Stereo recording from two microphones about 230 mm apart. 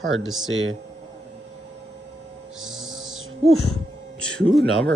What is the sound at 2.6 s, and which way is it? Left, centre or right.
Music, centre.